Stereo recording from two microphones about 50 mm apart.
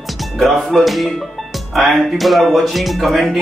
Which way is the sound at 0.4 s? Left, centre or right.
Centre.